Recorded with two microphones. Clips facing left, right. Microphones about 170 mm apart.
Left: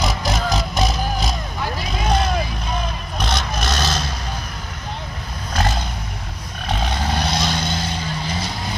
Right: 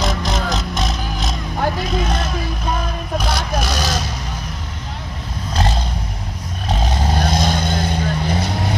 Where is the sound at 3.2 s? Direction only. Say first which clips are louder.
Left 1 dB; 10° right (ahead or behind).